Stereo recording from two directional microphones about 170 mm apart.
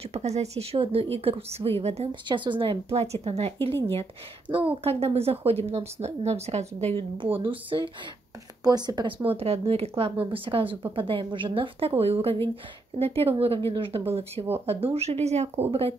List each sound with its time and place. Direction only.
0.0 s speech: 40° right (ahead or behind)